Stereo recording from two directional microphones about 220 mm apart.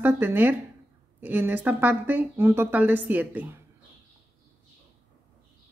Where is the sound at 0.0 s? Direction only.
10° right (ahead or behind).